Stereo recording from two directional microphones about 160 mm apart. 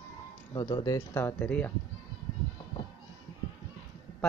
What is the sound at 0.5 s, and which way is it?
Speech, 25° left (ahead or behind).